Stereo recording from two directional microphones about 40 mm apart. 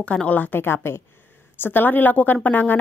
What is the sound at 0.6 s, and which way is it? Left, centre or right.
Speech, left.